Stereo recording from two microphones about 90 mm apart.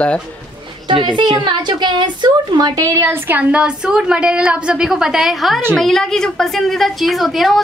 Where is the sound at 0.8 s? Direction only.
60° right (ahead or behind); by 3.1 s 40° right (ahead or behind).